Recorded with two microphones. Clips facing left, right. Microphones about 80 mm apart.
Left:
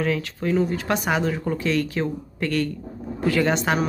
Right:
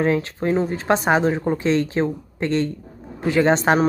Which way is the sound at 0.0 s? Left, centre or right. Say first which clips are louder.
Right 4 dB; right.